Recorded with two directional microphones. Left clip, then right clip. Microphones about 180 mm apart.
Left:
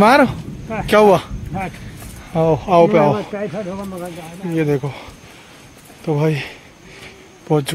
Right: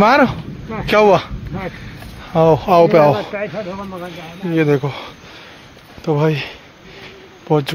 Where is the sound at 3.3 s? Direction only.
55° left (ahead or behind).